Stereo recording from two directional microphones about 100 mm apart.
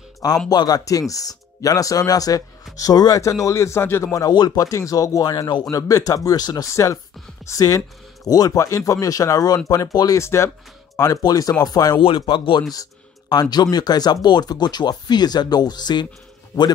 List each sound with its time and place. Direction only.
0.5 s speech: 40° left (ahead or behind)
12.3 s speech: 55° left (ahead or behind)
13.3 s speech: 40° left (ahead or behind)